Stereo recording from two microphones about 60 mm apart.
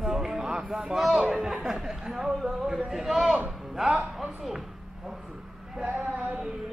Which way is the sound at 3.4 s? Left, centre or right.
Centre.